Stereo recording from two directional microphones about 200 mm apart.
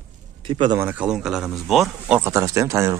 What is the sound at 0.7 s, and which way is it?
Speech, 10° right (ahead or behind).